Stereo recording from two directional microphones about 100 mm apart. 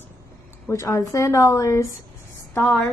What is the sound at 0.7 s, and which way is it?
A woman's voice, 30° left (ahead or behind).